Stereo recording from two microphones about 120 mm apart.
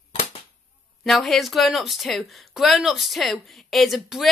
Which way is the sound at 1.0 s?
Centre (ahead or behind).